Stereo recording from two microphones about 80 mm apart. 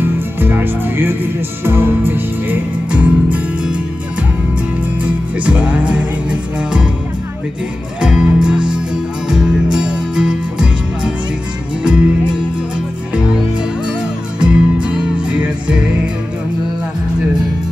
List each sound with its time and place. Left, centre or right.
0.0 s music: right
5.0 s music: centre
8.0 s music: centre
11.8 s music: centre
14.4 s music: centre